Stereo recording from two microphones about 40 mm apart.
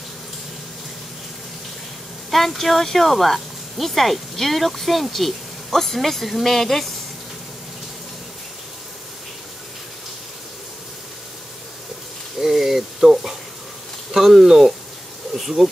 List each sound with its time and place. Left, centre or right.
2.3 s speech: centre
12.4 s speech: centre